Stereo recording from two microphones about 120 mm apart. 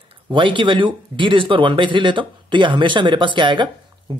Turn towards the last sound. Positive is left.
turn(degrees=-40)  # may be behind; listen again after turning